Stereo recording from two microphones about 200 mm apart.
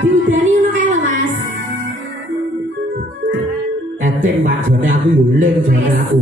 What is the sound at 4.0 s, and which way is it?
Speech, 40° right (ahead or behind).